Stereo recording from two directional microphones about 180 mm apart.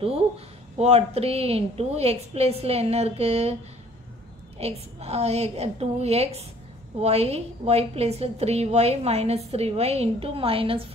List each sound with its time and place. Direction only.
0.7 s a woman's voice: 35° right (ahead or behind)
4.6 s a woman's voice: 35° right (ahead or behind)